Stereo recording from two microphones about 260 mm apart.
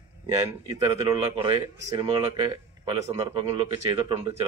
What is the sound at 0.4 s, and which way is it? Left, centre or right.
Speech, right.